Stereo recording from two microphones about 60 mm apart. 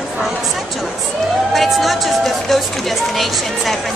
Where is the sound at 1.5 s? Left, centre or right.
Centre.